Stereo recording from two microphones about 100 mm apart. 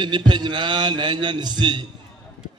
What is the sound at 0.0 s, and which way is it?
A man's voice, 50° right (ahead or behind).